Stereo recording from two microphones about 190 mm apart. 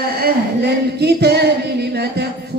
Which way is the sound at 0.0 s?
55° right (ahead or behind).